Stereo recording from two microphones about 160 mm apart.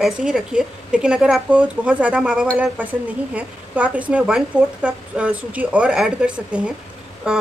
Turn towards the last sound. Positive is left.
turn(degrees=-5)  # may be behind; listen again after turning